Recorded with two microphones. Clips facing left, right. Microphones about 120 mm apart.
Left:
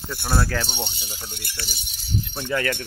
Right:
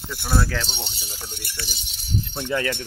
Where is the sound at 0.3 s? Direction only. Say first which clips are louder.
Even; 5° left (ahead or behind).